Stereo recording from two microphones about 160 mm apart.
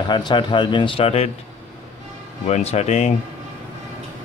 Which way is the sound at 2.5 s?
45° left (ahead or behind).